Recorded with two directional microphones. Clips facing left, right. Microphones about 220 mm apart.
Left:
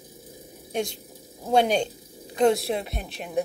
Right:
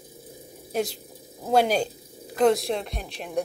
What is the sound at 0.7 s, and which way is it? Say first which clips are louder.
Speech: right 1 dB; 5° right (ahead or behind).